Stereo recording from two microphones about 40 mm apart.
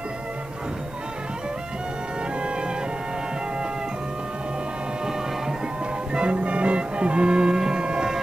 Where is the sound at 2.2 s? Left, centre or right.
Right.